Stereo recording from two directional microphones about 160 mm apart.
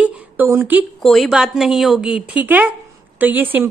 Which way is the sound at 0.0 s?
10° right (ahead or behind).